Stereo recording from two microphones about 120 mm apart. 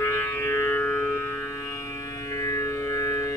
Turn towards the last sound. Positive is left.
turn(degrees=25)  # may be behind; listen again after turning